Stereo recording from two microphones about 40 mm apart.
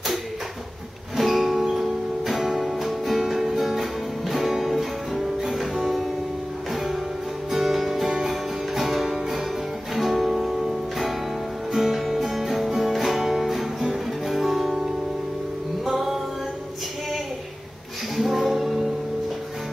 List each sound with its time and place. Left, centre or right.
1.1 s music: centre
7.5 s music: centre
18.1 s music: centre